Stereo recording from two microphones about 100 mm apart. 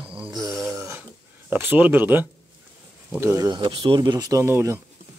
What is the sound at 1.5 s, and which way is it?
Speech, 20° right (ahead or behind).